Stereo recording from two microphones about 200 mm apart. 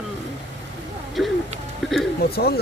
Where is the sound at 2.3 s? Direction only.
50° left (ahead or behind).